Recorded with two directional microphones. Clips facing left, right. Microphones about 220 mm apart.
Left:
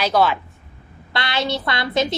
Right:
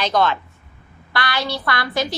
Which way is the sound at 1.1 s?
25° left (ahead or behind).